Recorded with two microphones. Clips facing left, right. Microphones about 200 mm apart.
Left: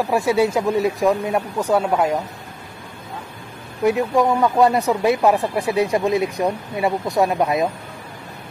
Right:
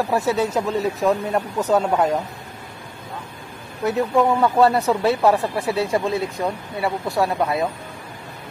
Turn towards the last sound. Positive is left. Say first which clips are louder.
# left 2 dB
turn(degrees=15)  # may be behind; listen again after turning